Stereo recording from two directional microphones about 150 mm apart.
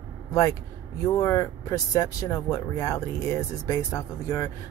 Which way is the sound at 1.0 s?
20° left (ahead or behind).